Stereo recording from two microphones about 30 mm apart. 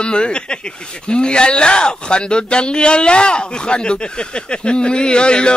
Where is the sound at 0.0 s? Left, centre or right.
Left.